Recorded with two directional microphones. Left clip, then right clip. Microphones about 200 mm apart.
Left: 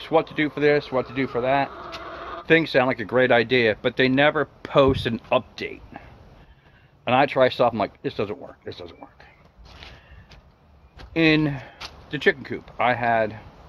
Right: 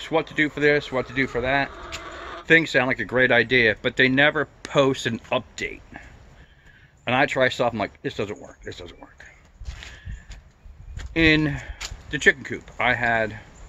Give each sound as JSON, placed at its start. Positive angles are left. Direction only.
{"t": 0.0, "sound": "speech", "side_deg": 0}
{"t": 2.0, "sound": "a sound", "side_deg": -25}
{"t": 2.4, "sound": "speech", "side_deg": 0}
{"t": 7.1, "sound": "speech", "side_deg": 0}
{"t": 9.7, "sound": "a sound", "side_deg": -20}
{"t": 11.0, "sound": "speech", "side_deg": -5}